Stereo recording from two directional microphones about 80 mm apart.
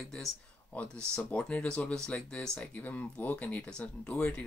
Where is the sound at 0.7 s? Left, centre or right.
Centre.